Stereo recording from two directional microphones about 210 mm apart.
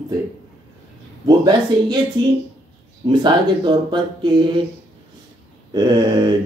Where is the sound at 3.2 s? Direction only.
20° right (ahead or behind).